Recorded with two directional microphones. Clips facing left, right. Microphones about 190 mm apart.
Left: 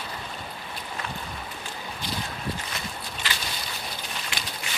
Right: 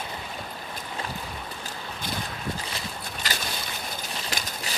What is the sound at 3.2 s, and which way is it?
Boat, 40° right (ahead or behind).